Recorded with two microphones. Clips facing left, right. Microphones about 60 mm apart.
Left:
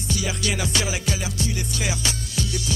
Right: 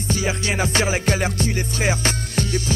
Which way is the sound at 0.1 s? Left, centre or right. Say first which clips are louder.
Right 3 dB; right.